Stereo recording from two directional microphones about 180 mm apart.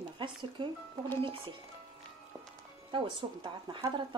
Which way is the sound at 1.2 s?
30° right (ahead or behind).